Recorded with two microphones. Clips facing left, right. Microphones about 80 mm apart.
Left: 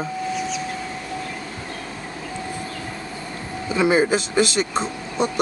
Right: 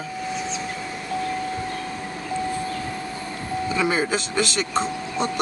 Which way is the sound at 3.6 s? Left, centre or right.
Left.